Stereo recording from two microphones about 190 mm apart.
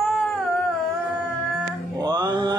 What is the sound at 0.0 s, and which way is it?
Cat, centre (ahead or behind).